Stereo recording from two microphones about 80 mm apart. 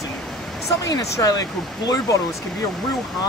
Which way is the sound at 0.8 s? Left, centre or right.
Left.